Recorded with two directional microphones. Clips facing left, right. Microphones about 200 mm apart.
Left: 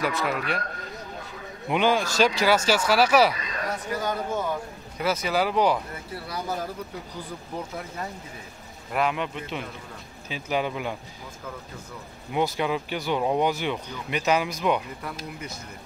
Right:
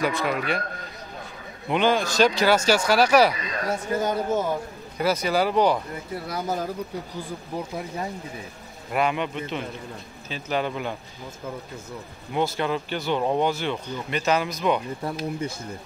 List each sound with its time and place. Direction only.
0.0 s speech: 5° left (ahead or behind)
1.7 s speech: 5° left (ahead or behind)
3.7 s speech: 25° right (ahead or behind)
4.9 s speech: 5° left (ahead or behind)
6.2 s speech: 20° right (ahead or behind)
8.9 s speech: centre (ahead or behind)
12.3 s speech: 10° left (ahead or behind)